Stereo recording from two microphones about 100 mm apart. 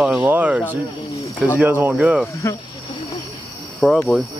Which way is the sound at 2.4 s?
30° left (ahead or behind).